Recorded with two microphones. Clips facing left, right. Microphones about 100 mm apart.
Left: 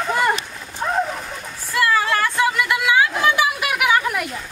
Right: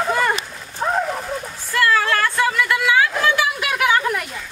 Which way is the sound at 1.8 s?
15° left (ahead or behind).